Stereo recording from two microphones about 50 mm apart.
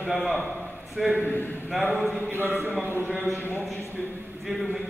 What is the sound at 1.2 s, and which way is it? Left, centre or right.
Speech, left.